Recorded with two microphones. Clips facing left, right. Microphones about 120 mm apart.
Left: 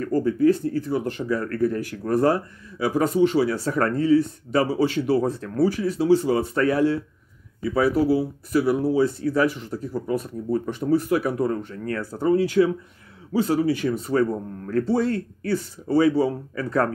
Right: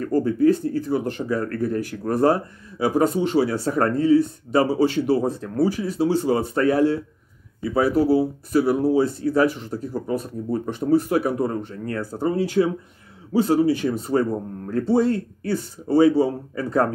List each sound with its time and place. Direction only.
0.0 s speech: 35° right (ahead or behind)